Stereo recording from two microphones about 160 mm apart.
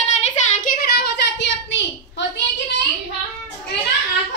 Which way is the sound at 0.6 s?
75° left (ahead or behind).